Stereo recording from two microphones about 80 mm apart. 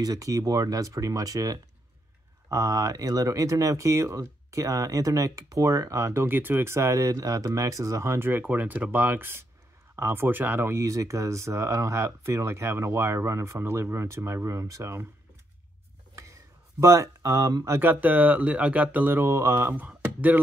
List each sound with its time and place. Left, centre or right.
0.0 s speech: right
16.8 s speech: right
17.6 s speech: right
19.9 s a sound: centre